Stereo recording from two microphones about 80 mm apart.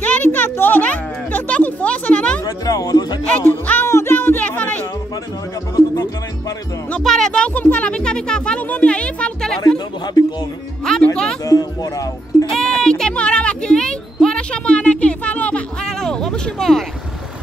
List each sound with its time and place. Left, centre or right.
0.0 s music: centre
2.4 s music: left
3.4 s music: left
7.0 s music: centre
10.9 s music: centre
11.4 s music: left
12.4 s music: centre